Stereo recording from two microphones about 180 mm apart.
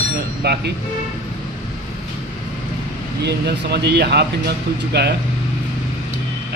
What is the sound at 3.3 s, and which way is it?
Speech, 65° right (ahead or behind).